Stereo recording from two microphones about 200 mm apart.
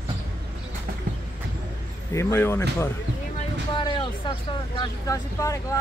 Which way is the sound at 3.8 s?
25° left (ahead or behind).